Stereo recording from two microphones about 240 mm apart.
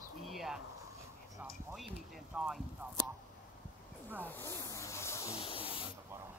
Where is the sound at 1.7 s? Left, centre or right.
Centre.